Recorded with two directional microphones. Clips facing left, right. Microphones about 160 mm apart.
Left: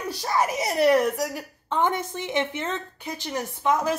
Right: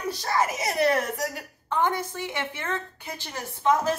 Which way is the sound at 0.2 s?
15° left (ahead or behind).